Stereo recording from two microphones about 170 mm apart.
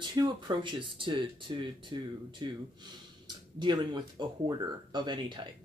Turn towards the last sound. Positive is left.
turn(degrees=-25)  # may be behind; listen again after turning